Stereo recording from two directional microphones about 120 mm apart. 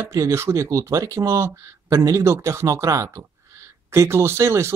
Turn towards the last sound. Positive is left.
turn(degrees=-20)  # may be behind; listen again after turning